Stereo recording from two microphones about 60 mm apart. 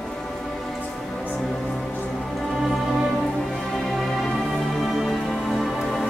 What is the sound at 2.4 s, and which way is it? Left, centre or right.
Music, centre.